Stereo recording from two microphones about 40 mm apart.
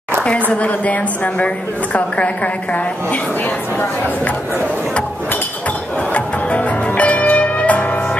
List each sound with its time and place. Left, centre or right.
0.2 s a woman's voice: left
6.1 s music: left